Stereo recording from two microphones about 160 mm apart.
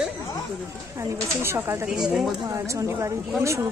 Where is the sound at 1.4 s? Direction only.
15° right (ahead or behind).